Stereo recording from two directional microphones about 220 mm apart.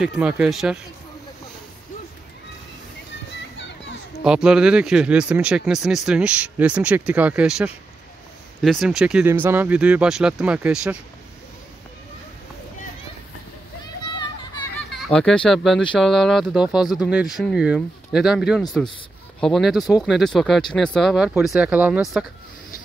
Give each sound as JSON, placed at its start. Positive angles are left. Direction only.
{"t": 0.0, "sound": "speech", "side_deg": -5}
{"t": 3.5, "sound": "children playing", "side_deg": 55}
{"t": 4.2, "sound": "speech", "side_deg": -5}
{"t": 15.0, "sound": "speech", "side_deg": 5}